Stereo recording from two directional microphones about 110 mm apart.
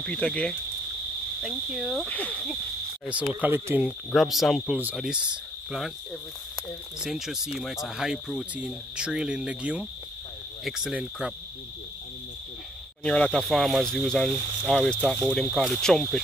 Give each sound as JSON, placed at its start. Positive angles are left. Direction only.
{"t": 0.0, "sound": "speech", "side_deg": 10}
{"t": 1.4, "sound": "speech", "side_deg": -5}
{"t": 2.0, "sound": "speech", "side_deg": 15}
{"t": 3.1, "sound": "speech", "side_deg": -15}
{"t": 3.8, "sound": "speech", "side_deg": 0}
{"t": 4.9, "sound": "cricket", "side_deg": -5}
{"t": 7.0, "sound": "speech", "side_deg": -5}
{"t": 13.0, "sound": "speech", "side_deg": 10}